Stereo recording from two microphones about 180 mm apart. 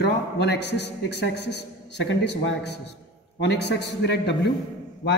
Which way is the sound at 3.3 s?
70° left (ahead or behind).